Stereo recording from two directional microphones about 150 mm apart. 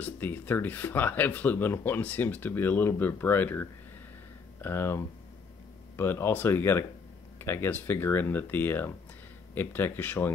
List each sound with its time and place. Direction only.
0.0 s speech: 15° left (ahead or behind)